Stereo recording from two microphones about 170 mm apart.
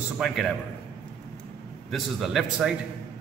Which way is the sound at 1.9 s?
Centre (ahead or behind).